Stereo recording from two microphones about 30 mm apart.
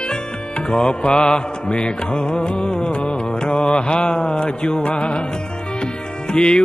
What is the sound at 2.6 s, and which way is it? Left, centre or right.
Music, left.